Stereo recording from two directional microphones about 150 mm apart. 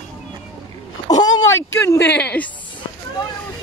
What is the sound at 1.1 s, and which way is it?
Speech, 25° left (ahead or behind).